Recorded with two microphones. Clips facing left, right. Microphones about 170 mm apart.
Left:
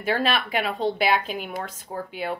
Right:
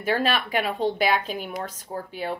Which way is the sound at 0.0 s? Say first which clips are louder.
Even; 45° right (ahead or behind).